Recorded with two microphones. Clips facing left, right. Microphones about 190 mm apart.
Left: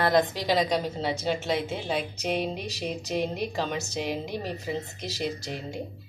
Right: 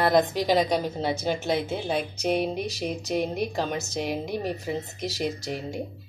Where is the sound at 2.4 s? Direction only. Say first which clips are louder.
Right 3 dB; 10° right (ahead or behind).